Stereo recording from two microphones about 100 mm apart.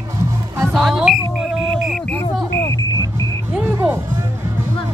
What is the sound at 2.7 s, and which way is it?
Vehicle, 35° left (ahead or behind).